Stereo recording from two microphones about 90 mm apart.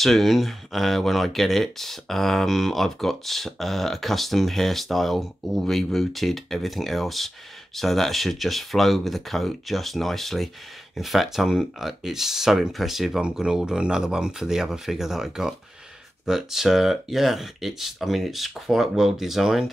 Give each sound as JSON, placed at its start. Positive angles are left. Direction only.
{"t": 0.0, "sound": "speech", "side_deg": 0}